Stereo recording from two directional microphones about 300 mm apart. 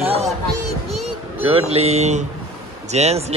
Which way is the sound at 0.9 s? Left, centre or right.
Centre.